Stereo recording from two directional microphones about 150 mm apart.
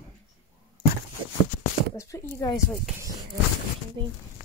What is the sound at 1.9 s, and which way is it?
Speech, 20° left (ahead or behind).